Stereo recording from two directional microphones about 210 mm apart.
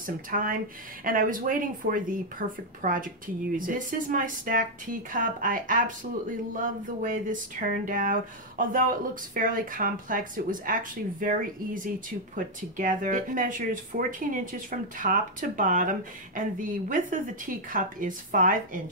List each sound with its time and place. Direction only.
0.0 s speech: 40° right (ahead or behind)